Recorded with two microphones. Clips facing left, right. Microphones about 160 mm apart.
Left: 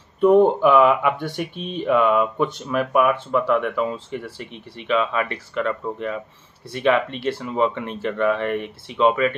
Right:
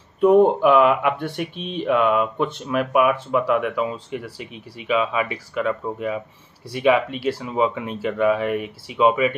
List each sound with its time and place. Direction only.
0.2 s speech: centre (ahead or behind)